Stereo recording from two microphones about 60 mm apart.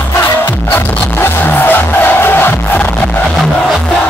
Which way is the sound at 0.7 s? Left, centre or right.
Left.